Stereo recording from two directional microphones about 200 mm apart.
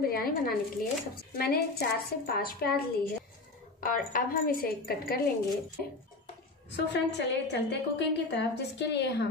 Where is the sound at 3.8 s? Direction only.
45° left (ahead or behind).